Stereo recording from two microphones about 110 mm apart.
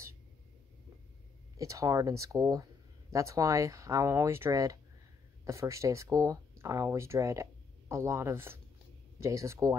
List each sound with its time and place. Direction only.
1.6 s speech: 30° right (ahead or behind)